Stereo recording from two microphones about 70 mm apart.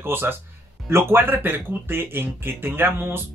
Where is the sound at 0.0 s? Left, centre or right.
Right.